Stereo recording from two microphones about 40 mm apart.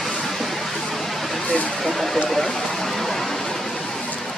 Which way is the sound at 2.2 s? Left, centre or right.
Centre.